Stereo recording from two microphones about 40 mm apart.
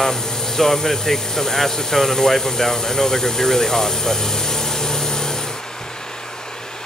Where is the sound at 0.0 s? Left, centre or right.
Centre.